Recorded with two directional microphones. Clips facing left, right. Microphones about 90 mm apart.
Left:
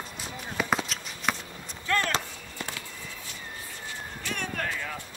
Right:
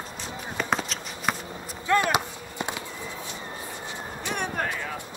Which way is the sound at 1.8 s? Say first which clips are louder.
Right 5 dB; 15° right (ahead or behind).